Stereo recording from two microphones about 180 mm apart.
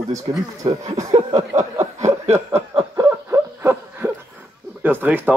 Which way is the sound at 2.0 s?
40° right (ahead or behind).